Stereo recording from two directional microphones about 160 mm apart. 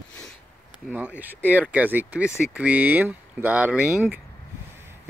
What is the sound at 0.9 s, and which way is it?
Speech, 10° right (ahead or behind).